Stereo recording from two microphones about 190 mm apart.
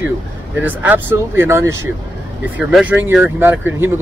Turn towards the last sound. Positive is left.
turn(degrees=-10)  # may be behind; listen again after turning